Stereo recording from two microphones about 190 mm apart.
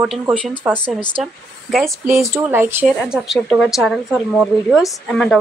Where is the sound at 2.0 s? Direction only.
15° right (ahead or behind); by 5.4 s 5° left (ahead or behind).